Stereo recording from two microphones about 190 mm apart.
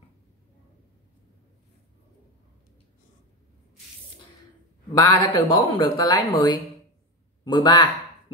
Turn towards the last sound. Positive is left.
turn(degrees=25)  # may be behind; listen again after turning